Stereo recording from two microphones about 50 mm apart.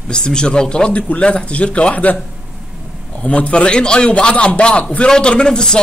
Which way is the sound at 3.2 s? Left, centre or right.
Left.